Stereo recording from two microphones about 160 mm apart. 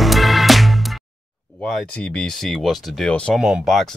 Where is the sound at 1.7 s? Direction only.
5° left (ahead or behind).